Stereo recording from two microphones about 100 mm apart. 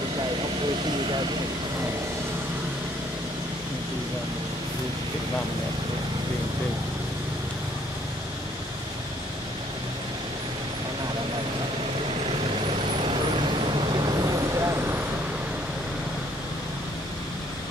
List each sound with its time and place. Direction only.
13.0 s vehicle: 55° right (ahead or behind)
14.6 s vehicle: 30° right (ahead or behind)